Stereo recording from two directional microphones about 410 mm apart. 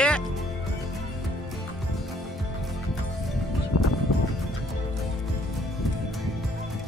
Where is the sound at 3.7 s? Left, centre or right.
Left.